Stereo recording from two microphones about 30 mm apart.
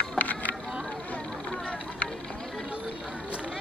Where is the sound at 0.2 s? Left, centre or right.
Left.